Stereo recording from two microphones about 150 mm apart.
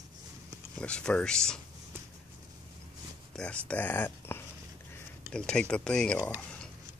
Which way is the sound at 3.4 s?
10° left (ahead or behind).